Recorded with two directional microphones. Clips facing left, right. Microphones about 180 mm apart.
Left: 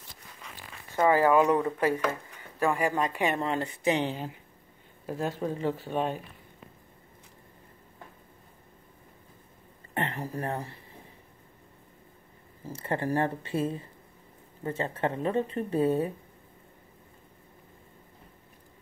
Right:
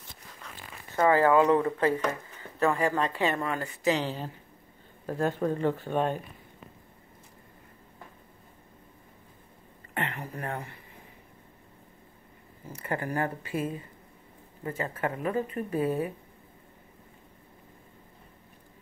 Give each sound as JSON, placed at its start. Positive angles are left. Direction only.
{"t": 0.9, "sound": "speech", "side_deg": 15}
{"t": 5.0, "sound": "speech", "side_deg": 5}
{"t": 9.9, "sound": "speech", "side_deg": 30}
{"t": 12.6, "sound": "speech", "side_deg": 30}